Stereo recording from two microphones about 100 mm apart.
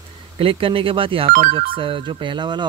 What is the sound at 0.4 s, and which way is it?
Speech, 65° right (ahead or behind).